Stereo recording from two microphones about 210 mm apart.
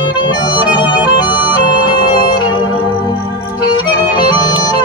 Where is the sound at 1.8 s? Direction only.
20° left (ahead or behind).